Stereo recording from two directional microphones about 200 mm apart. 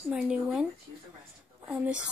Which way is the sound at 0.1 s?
Centre (ahead or behind).